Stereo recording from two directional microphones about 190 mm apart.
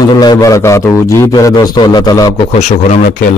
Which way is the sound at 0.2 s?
20° left (ahead or behind).